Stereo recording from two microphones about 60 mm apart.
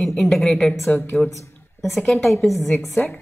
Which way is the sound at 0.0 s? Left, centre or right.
Centre.